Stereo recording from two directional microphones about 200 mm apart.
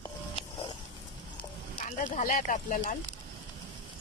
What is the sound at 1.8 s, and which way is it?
Speech, 40° left (ahead or behind).